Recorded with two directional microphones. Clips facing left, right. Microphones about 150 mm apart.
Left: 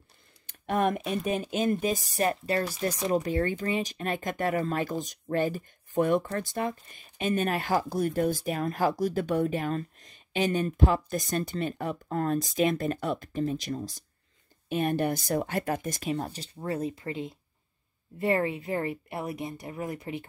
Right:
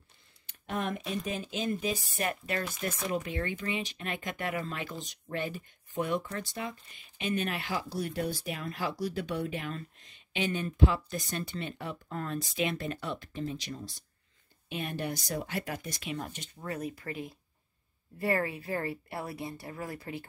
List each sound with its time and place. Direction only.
0.5 s speech: 55° left (ahead or behind); by 20.2 s 20° left (ahead or behind)